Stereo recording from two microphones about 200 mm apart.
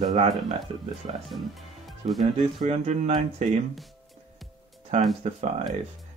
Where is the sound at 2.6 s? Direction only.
30° right (ahead or behind).